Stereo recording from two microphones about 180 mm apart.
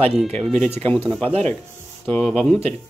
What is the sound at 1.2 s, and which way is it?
Speech, 35° right (ahead or behind).